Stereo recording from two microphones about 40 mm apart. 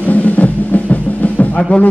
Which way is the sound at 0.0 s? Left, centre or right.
Left.